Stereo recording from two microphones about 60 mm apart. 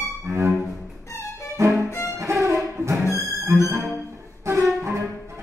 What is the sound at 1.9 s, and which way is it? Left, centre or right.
Violin, left.